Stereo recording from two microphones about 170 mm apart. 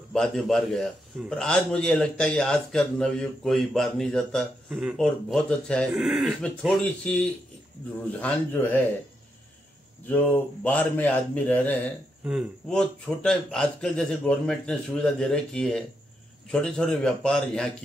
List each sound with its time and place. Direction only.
0.1 s a man's voice: 5° left (ahead or behind)
10.0 s a man's voice: 10° left (ahead or behind)
12.3 s a man's voice: centre (ahead or behind)